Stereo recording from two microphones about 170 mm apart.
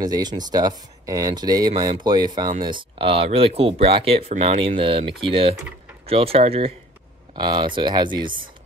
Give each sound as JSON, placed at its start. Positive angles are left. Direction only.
{"t": 0.0, "sound": "speech", "side_deg": -25}